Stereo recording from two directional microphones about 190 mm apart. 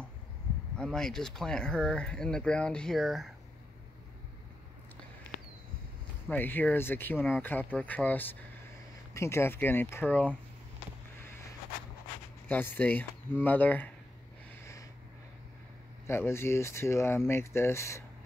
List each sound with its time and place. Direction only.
0.7 s speech: 5° left (ahead or behind)
6.3 s speech: 10° left (ahead or behind)
12.4 s speech: 10° left (ahead or behind)
14.6 s a sound: 15° left (ahead or behind)
16.1 s speech: 15° left (ahead or behind)